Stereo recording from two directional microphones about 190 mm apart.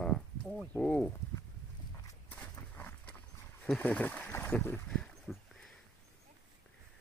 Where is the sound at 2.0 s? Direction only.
10° left (ahead or behind).